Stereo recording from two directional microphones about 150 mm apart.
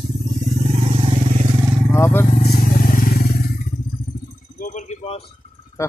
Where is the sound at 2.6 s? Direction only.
65° left (ahead or behind).